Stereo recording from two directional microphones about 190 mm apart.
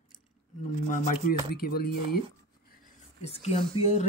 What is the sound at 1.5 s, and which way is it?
Speech, 55° left (ahead or behind).